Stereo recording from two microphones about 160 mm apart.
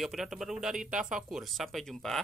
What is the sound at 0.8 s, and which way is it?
Speech, 50° right (ahead or behind).